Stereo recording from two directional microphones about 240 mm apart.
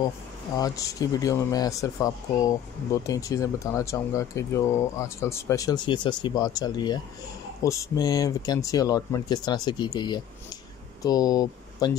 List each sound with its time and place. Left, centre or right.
0.6 s speech: centre